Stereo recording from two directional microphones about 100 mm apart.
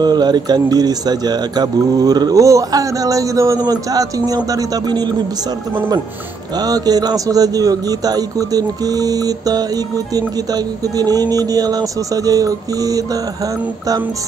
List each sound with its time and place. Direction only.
0.0 s a man's voice: 45° right (ahead or behind)
6.6 s a man's voice: 40° right (ahead or behind)